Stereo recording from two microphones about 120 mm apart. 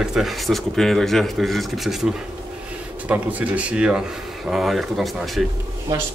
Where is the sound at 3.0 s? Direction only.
10° right (ahead or behind).